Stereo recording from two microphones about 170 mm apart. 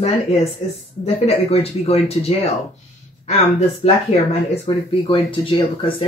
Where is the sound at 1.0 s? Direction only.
35° left (ahead or behind).